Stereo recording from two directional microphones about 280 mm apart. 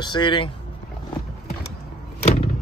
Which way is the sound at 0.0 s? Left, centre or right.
Centre.